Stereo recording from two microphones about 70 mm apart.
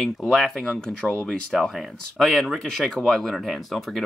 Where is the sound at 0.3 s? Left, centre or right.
Centre.